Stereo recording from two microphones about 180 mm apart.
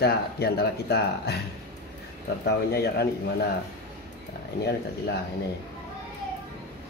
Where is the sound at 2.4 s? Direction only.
65° left (ahead or behind).